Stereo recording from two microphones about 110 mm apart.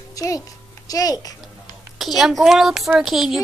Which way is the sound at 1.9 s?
Centre (ahead or behind).